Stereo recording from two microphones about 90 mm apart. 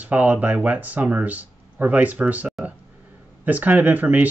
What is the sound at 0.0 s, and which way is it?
Speech, 15° right (ahead or behind).